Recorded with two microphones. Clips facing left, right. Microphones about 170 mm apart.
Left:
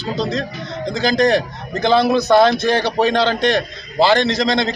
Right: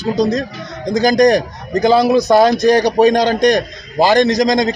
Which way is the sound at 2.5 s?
40° right (ahead or behind).